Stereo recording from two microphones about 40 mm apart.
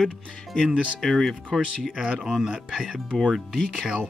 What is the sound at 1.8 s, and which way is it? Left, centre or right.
Speech, centre.